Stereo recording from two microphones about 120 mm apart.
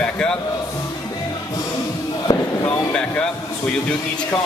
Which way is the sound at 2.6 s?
5° left (ahead or behind).